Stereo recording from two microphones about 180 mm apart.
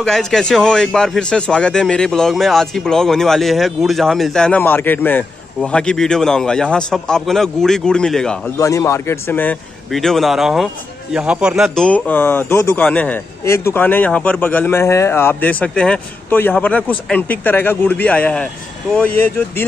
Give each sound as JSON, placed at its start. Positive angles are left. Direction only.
{"t": 0.0, "sound": "a man's voice", "side_deg": 0}
{"t": 8.5, "sound": "speech", "side_deg": 15}